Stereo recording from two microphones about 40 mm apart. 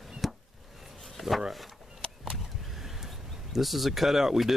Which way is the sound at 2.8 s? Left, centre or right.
Centre.